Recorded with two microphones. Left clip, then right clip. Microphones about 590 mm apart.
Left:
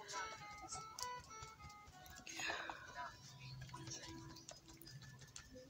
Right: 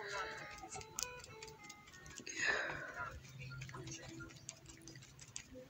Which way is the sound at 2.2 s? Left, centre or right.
Left.